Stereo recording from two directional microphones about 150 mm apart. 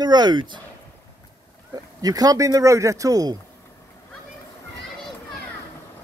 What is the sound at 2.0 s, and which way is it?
Speech, 25° right (ahead or behind).